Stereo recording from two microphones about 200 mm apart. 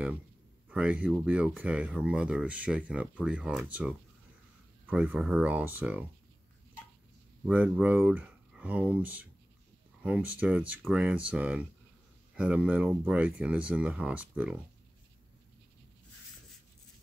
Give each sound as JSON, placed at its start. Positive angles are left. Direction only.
{"t": 0.7, "sound": "speech", "side_deg": -5}
{"t": 4.8, "sound": "speech", "side_deg": -10}
{"t": 7.4, "sound": "speech", "side_deg": -5}